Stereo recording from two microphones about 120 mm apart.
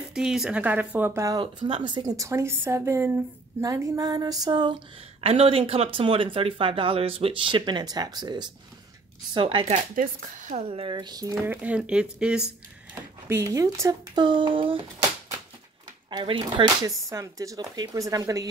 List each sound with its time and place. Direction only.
0.1 s speech: 5° right (ahead or behind)
1.4 s speech: 40° right (ahead or behind); by 3.2 s 20° right (ahead or behind)
3.6 s a sound: 30° right (ahead or behind)
5.2 s speech: 55° right (ahead or behind); by 8.5 s 35° right (ahead or behind)
9.3 s speech: 45° right (ahead or behind)
10.3 s a woman's voice: 90° right
10.7 s a sound: 45° right (ahead or behind)
11.4 s speech: 10° right (ahead or behind)
13.3 s speech: 25° right (ahead or behind)
14.2 s speech: 45° right (ahead or behind)
16.1 s a sound: 40° right (ahead or behind)
16.8 s speech: 25° right (ahead or behind)